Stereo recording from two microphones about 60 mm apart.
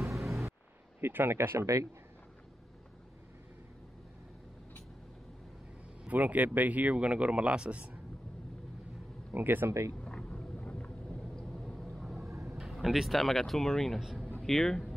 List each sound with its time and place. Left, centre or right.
0.0 s music: centre
1.0 s speech: right
6.0 s speech: right
9.3 s speech: right
10.0 s vehicle: centre
11.3 s vehicle: centre
12.5 s speech: centre
14.0 s a sound: centre
14.4 s speech: centre